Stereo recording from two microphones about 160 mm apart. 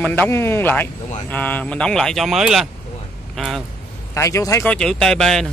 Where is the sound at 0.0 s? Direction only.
10° left (ahead or behind).